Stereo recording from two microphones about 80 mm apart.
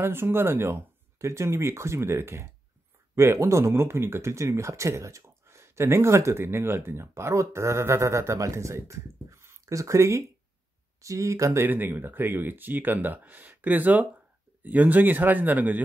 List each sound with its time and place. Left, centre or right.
0.0 s speech: right
11.6 s speech: right